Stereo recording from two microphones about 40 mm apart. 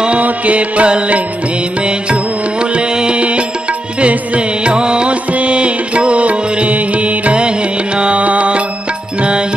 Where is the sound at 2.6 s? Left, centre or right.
Right.